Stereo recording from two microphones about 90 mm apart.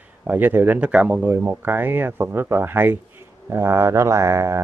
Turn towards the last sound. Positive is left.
turn(degrees=-30)  # may be behind; listen again after turning